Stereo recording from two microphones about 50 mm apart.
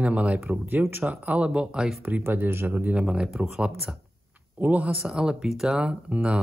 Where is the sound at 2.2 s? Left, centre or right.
Right.